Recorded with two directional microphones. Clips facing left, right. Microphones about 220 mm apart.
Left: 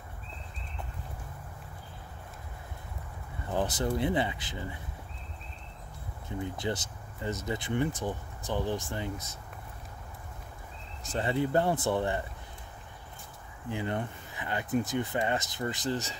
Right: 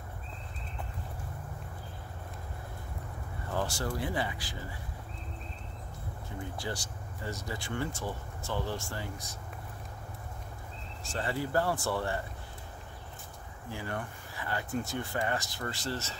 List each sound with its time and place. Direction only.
3.4 s speech: 20° left (ahead or behind)
6.4 s speech: 20° left (ahead or behind)
11.1 s speech: 20° left (ahead or behind)
13.7 s speech: 20° left (ahead or behind)